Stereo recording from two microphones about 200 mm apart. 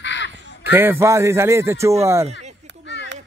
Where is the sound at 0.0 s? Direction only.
65° left (ahead or behind).